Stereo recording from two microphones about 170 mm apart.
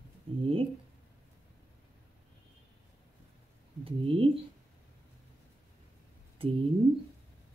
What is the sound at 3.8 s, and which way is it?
Speech, 30° right (ahead or behind).